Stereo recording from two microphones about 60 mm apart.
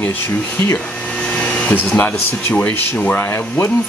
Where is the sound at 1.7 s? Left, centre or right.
Left.